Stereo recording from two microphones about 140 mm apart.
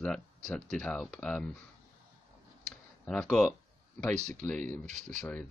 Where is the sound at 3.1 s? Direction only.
5° left (ahead or behind).